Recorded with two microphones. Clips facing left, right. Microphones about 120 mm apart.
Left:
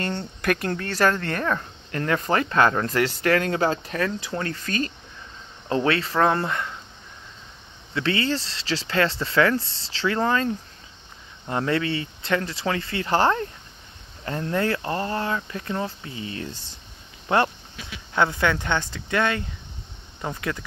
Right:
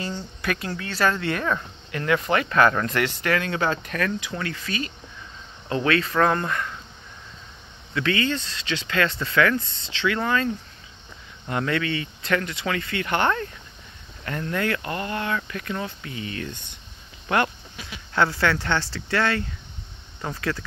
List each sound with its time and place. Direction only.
0.0 s speech: 60° left (ahead or behind); by 4.9 s 45° left (ahead or behind)
5.7 s speech: 30° left (ahead or behind)
7.9 s speech: 30° left (ahead or behind)
18.1 s speech: 20° left (ahead or behind)